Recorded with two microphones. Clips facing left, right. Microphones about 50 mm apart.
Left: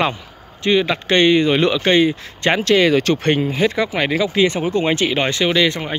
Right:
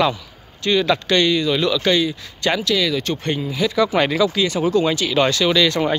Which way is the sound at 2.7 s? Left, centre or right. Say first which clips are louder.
Left 6 dB; left.